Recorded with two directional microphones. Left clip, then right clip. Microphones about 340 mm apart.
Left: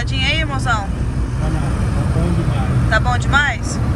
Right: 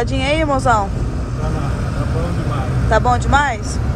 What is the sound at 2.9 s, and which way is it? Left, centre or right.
Speech, centre.